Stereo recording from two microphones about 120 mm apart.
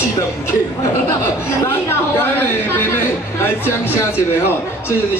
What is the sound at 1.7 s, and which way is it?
A man's voice, 20° left (ahead or behind).